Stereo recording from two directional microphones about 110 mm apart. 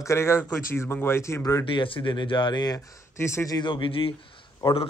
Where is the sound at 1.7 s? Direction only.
50° left (ahead or behind).